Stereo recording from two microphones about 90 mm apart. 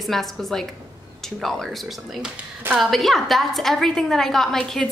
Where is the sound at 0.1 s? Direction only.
Centre (ahead or behind).